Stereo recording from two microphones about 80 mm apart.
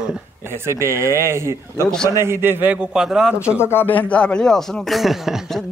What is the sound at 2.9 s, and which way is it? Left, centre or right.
Speech, centre.